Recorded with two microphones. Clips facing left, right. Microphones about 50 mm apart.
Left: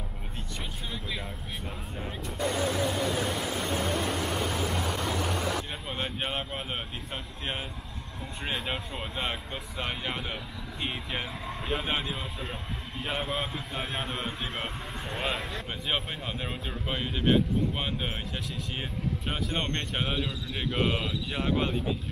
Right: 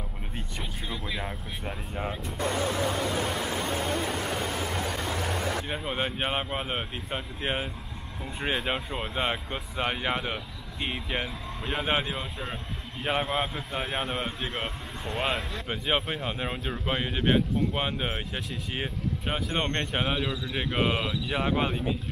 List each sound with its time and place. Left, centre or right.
0.8 s speech: centre
5.7 s speech: centre
10.3 s speech: centre
15.7 s speech: centre